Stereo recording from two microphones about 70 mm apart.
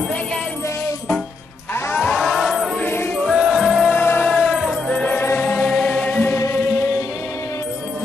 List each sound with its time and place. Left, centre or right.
2.1 s music: centre
2.8 s music: left
3.3 s music: centre
3.9 s music: left
4.3 s music: centre
5.6 s music: centre
5.9 s music: left
6.2 s music: left